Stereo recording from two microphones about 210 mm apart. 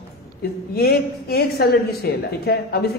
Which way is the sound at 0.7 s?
50° left (ahead or behind).